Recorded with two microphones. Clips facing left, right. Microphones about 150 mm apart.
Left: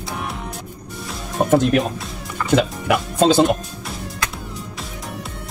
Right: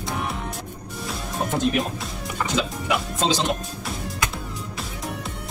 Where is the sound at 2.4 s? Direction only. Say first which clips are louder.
Left 8 dB; 55° left (ahead or behind).